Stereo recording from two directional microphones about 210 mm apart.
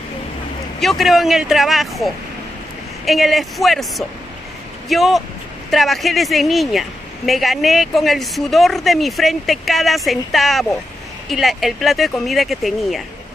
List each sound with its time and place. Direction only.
0.7 s speech: centre (ahead or behind)